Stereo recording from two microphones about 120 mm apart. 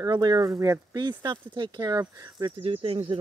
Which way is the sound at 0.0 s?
35° right (ahead or behind).